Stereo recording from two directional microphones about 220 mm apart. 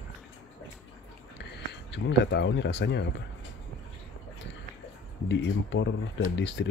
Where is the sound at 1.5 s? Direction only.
55° left (ahead or behind).